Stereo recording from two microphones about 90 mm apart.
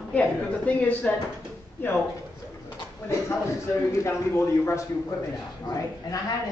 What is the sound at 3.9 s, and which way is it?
Speech, 30° left (ahead or behind).